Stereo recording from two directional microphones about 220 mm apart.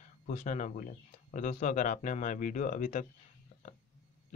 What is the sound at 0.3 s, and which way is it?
Speech, 35° left (ahead or behind).